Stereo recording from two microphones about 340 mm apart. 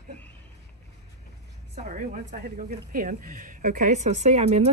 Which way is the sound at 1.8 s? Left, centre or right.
Right.